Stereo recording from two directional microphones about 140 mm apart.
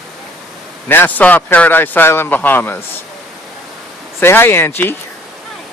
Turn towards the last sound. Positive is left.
turn(degrees=15)  # may be behind; listen again after turning